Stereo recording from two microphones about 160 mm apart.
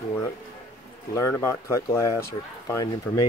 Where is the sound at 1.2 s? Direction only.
15° left (ahead or behind).